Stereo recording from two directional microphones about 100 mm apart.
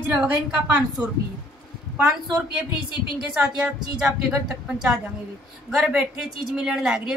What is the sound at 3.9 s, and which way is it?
A woman's voice, 5° right (ahead or behind).